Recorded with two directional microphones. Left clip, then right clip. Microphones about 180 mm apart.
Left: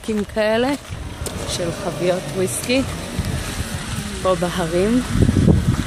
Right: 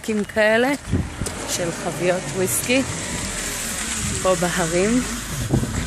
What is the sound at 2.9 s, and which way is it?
Vehicle, 50° left (ahead or behind).